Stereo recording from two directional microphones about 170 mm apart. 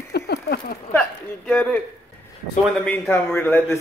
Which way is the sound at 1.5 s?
10° left (ahead or behind).